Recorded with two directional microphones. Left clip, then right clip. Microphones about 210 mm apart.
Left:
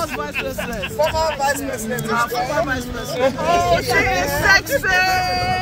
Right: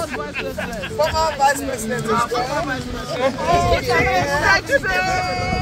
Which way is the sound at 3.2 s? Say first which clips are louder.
Left 1 dB; 60° left (ahead or behind).